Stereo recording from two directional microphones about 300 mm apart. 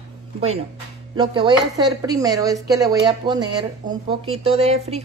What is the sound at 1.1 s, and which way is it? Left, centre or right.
Speech, centre.